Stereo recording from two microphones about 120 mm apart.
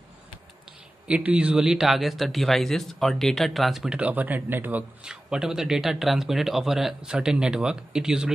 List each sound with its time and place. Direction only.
1.0 s speech: 10° right (ahead or behind)